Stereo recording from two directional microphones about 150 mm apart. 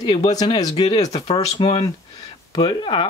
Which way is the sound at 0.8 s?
40° left (ahead or behind).